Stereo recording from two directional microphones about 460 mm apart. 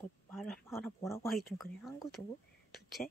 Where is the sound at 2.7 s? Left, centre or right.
Centre.